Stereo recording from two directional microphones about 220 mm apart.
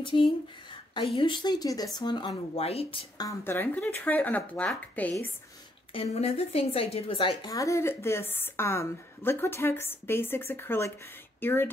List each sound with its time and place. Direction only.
0.0 s a woman's voice: 20° left (ahead or behind); by 5.1 s 5° left (ahead or behind)
5.9 s a woman's voice: 30° left (ahead or behind); by 11.7 s 10° left (ahead or behind)